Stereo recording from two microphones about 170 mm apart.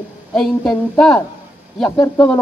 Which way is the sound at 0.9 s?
5° left (ahead or behind).